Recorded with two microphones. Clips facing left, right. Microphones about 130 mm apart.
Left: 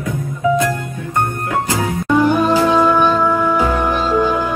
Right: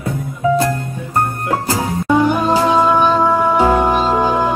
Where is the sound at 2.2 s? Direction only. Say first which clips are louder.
Left 3 dB; 25° right (ahead or behind).